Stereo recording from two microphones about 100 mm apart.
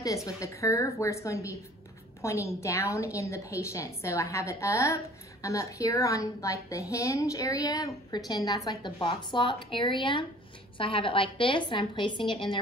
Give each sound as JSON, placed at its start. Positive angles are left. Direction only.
{"t": 0.0, "sound": "a woman's voice", "side_deg": 35}